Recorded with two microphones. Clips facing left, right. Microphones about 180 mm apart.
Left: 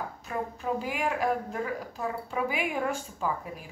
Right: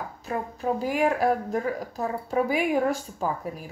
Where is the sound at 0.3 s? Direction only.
40° right (ahead or behind).